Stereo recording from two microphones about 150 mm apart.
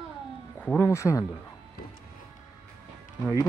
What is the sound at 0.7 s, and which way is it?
Speech, 20° left (ahead or behind).